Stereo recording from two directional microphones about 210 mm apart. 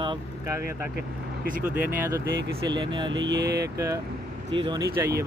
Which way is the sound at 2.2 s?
55° right (ahead or behind).